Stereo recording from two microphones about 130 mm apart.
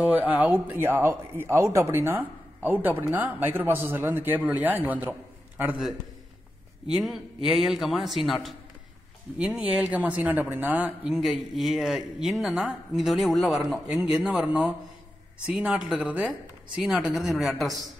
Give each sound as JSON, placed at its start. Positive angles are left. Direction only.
{"t": 0.0, "sound": "speech", "side_deg": -10}
{"t": 7.5, "sound": "speech", "side_deg": 0}
{"t": 11.1, "sound": "speech", "side_deg": 0}